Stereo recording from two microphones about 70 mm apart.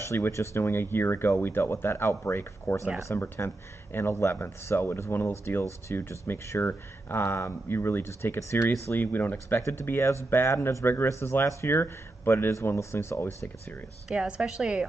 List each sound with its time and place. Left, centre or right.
0.0 s speech: left
8.9 s speech: left
9.6 s speech: left
14.1 s a woman's voice: centre